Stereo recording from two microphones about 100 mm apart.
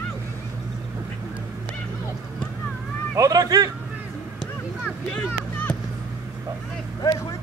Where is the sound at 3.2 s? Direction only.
35° right (ahead or behind).